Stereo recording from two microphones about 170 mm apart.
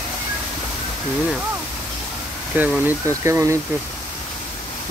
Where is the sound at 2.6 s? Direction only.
10° right (ahead or behind).